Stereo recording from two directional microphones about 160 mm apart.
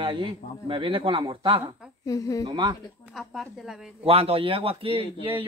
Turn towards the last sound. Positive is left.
turn(degrees=-35)  # may be behind; listen again after turning